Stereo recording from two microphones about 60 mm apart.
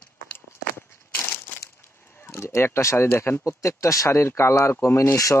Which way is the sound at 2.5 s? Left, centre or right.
Left.